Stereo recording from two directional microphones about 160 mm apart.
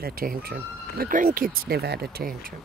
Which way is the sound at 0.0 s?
65° right (ahead or behind).